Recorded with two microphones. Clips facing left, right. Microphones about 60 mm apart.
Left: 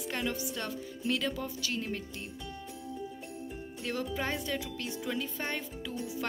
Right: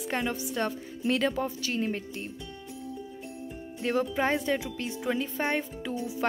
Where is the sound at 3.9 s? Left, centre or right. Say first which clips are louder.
Right 8 dB; right.